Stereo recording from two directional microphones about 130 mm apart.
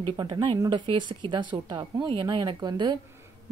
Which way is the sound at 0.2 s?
35° right (ahead or behind).